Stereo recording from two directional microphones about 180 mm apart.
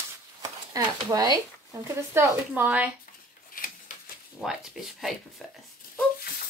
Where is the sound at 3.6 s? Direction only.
50° left (ahead or behind).